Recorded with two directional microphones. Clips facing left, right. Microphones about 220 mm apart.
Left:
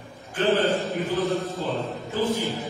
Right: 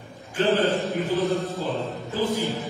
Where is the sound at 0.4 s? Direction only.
Centre (ahead or behind).